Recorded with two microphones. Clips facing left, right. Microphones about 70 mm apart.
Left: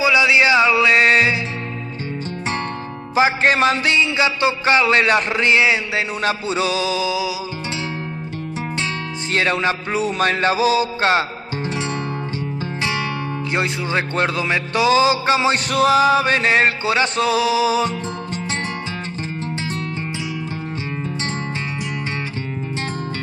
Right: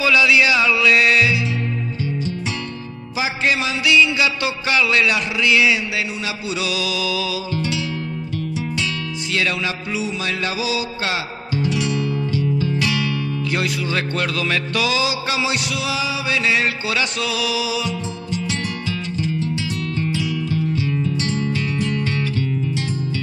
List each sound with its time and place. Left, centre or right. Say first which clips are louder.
0.0 s music: left 1 dB; left
3.2 s music: left 6 dB; left
9.3 s music: left 4 dB; left
20.0 s music: right 4 dB; left